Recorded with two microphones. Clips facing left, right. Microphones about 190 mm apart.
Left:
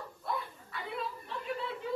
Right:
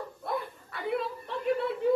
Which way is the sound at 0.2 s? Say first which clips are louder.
Right 3 dB; 60° right (ahead or behind).